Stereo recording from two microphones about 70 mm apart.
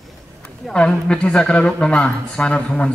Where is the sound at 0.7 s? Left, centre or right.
Centre.